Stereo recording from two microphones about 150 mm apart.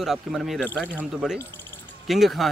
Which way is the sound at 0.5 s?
10° left (ahead or behind).